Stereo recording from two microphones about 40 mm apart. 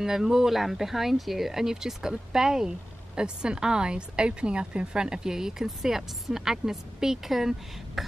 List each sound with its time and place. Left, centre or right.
0.0 s a woman's voice: centre